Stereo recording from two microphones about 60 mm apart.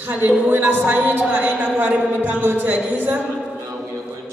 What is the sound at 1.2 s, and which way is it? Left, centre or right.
A man's voice, right.